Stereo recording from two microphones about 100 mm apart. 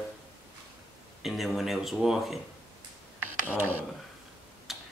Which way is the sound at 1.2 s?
Centre (ahead or behind).